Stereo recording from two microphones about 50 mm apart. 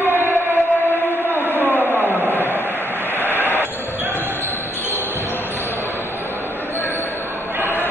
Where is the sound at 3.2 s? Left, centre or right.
Right.